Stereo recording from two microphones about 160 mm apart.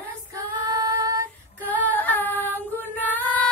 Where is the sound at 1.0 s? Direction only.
15° right (ahead or behind).